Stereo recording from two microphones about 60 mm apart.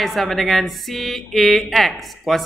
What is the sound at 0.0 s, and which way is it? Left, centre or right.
Speech, centre.